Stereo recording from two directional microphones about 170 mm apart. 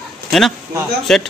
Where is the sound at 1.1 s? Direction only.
5° left (ahead or behind).